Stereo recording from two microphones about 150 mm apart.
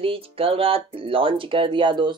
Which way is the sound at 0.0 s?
40° right (ahead or behind).